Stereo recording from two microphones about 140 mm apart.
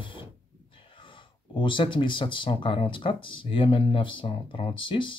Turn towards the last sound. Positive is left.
turn(degrees=35)  # may be behind; listen again after turning